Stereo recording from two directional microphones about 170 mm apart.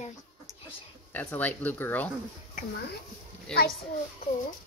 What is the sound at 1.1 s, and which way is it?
Speech, 10° left (ahead or behind).